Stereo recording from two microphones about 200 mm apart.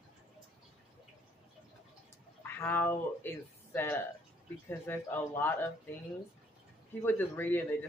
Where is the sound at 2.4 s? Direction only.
10° left (ahead or behind).